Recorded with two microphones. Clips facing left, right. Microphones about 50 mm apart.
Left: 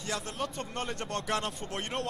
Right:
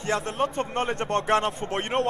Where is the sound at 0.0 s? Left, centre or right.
Right.